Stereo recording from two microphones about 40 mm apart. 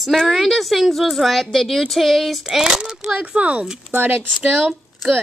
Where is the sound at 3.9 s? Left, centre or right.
Right.